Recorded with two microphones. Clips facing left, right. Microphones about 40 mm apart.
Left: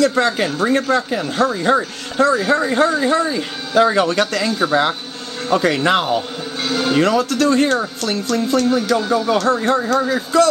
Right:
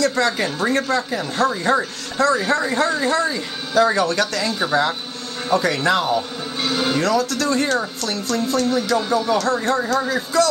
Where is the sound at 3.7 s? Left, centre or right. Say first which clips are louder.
Left 3 dB; left.